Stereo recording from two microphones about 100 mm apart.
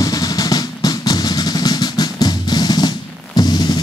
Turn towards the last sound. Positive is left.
turn(degrees=45)  # may be behind; listen again after turning